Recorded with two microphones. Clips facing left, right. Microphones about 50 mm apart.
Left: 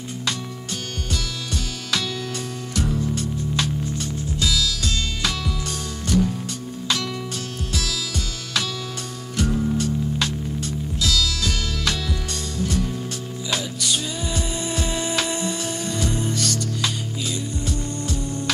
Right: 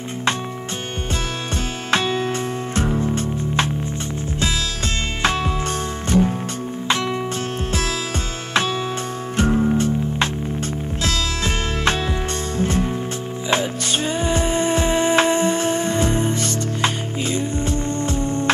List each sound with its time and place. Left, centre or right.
1.9 s music: right
9.4 s music: right